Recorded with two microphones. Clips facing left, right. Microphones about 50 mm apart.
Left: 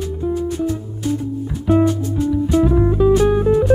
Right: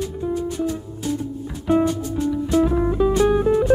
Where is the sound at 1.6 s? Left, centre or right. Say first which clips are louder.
Left 3 dB; centre.